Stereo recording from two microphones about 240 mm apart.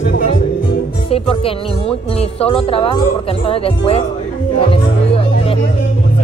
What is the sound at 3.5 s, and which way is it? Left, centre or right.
Speech, left.